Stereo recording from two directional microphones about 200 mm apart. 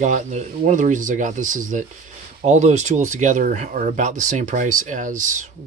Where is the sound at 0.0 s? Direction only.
35° right (ahead or behind).